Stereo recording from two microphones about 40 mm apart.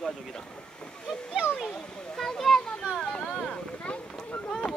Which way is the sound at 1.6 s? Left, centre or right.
Centre.